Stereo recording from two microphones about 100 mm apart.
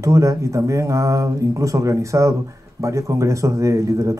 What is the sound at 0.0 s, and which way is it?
Speech, 30° right (ahead or behind).